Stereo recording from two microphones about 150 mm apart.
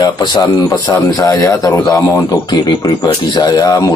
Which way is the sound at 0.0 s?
25° left (ahead or behind).